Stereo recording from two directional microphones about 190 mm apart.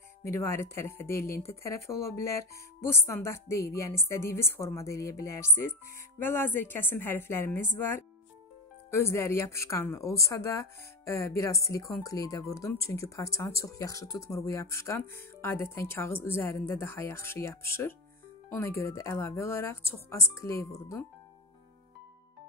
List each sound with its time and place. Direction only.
0.2 s speech: 15° left (ahead or behind)